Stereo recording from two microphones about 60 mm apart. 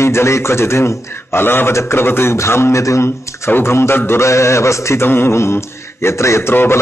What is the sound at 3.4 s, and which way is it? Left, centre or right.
A man's voice, left.